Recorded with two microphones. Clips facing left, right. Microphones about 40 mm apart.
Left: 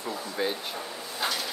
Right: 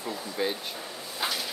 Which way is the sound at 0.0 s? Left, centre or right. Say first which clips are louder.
Even; centre.